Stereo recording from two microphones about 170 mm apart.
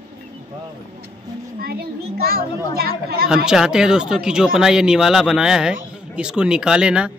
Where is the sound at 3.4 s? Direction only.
5° right (ahead or behind).